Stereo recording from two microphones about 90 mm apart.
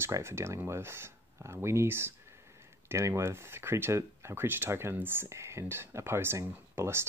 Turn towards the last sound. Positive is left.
turn(degrees=-25)  # may be behind; listen again after turning